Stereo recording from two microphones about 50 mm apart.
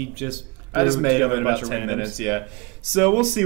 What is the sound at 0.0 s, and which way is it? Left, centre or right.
Speech, centre.